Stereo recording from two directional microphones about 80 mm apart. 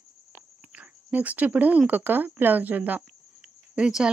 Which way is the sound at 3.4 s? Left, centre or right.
Centre.